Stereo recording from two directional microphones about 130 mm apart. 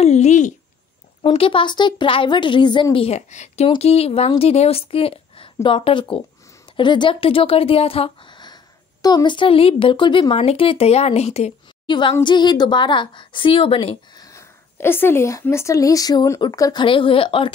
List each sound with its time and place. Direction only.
0.0 s a sound: 60° left (ahead or behind)
1.3 s a woman's voice: 45° left (ahead or behind)
3.2 s speech: 65° left (ahead or behind)
3.7 s a woman's voice: 50° left (ahead or behind); by 10.3 s 35° left (ahead or behind)
10.3 s a woman's voice: 50° left (ahead or behind)
11.8 s a woman's voice: 40° left (ahead or behind)
14.1 s speech: 25° left (ahead or behind)
16.8 s a woman's voice: 40° left (ahead or behind)